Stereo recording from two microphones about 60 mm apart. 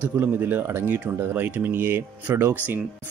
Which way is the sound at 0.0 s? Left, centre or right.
Right.